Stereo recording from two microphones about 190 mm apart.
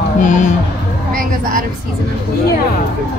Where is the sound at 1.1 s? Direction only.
45° right (ahead or behind).